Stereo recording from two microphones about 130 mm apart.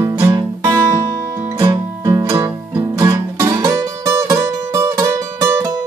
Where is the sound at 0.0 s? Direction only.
30° right (ahead or behind).